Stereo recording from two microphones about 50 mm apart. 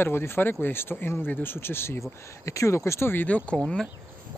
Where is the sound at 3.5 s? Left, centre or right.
Centre.